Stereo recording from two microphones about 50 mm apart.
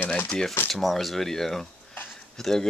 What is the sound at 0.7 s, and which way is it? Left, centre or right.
Speech, centre.